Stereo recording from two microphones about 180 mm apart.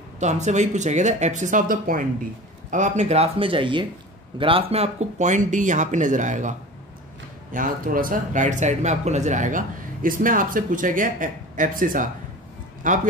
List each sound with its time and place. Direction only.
0.2 s speech: 40° right (ahead or behind)
7.5 s speech: 50° right (ahead or behind)